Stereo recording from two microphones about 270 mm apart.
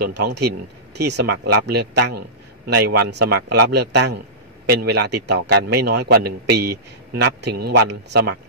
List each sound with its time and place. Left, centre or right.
0.9 s a man's voice: right